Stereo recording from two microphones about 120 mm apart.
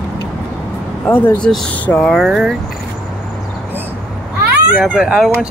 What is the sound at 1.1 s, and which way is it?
Speech, 15° left (ahead or behind).